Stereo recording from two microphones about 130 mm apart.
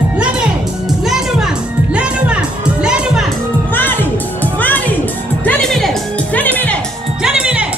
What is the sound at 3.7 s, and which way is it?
Music, 15° left (ahead or behind).